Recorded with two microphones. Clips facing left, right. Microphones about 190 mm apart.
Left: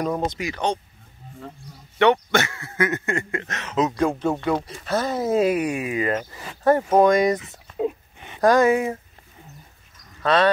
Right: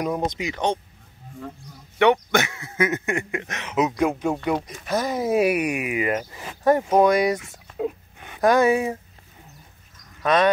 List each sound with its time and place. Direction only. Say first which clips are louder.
0.0 s speech: even; 5° right (ahead or behind)
0.3 s speech: even; 20° right (ahead or behind)
2.0 s speech: even; 15° right (ahead or behind)
7.4 s dog: left 2 dB; centre (ahead or behind)
8.5 s speech: left 1 dB; 15° right (ahead or behind)
10.2 s speech: even; 15° right (ahead or behind)